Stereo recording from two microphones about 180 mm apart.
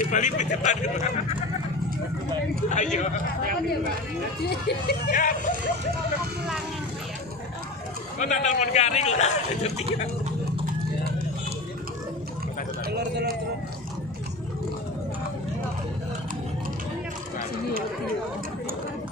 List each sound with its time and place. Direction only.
0.0 s a man's voice: 45° left (ahead or behind)
2.7 s speech: 45° left (ahead or behind)
4.5 s speech: 65° left (ahead or behind)
8.2 s a man's voice: 40° left (ahead or behind)
12.8 s speech: 65° right (ahead or behind)